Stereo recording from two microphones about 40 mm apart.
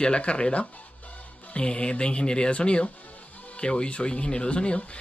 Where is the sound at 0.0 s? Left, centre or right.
Left.